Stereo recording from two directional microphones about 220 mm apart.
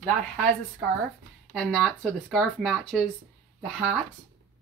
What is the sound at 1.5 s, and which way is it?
A woman's voice, centre (ahead or behind).